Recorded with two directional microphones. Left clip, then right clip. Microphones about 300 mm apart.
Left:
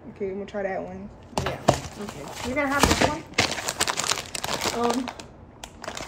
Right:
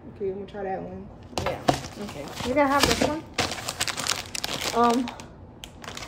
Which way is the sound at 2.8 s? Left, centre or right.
Left.